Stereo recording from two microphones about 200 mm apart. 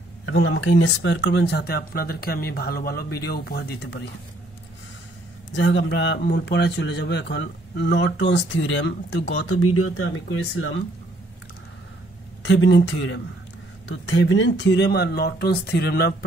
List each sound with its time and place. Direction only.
0.2 s speech: 80° left; by 4.1 s 55° left (ahead or behind)
5.5 s speech: 65° left (ahead or behind); by 10.8 s 80° left
12.4 s speech: 65° left (ahead or behind)